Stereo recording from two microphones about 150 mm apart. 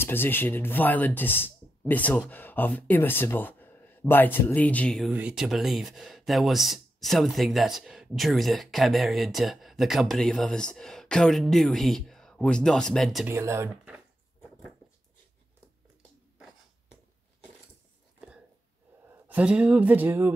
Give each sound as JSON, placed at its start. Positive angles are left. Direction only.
{"t": 0.0, "sound": "speech", "side_deg": 15}
{"t": 13.3, "sound": "speech", "side_deg": -15}
{"t": 19.2, "sound": "speech", "side_deg": -10}